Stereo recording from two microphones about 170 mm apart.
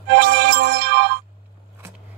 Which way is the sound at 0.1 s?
70° right (ahead or behind).